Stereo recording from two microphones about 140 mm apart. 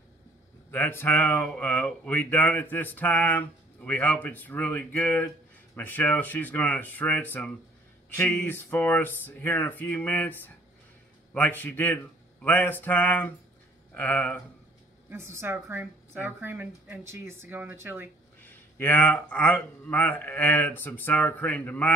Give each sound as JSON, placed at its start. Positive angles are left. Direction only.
{"t": 0.7, "sound": "speech", "side_deg": 15}
{"t": 15.0, "sound": "a woman's voice", "side_deg": -20}
{"t": 18.4, "sound": "speech", "side_deg": 15}